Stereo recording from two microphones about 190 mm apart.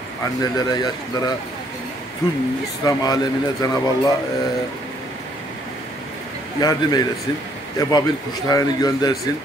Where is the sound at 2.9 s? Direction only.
20° left (ahead or behind).